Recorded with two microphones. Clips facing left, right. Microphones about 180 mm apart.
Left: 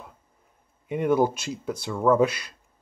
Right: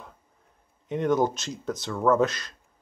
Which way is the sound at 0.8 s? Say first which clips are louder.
Left 2 dB; 10° left (ahead or behind).